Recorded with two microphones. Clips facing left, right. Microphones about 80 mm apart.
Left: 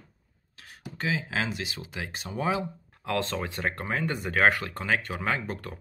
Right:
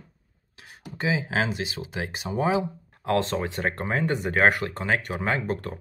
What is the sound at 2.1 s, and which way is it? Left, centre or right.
Speech, centre.